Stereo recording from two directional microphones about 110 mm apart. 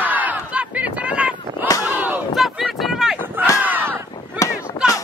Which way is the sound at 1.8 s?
15° right (ahead or behind).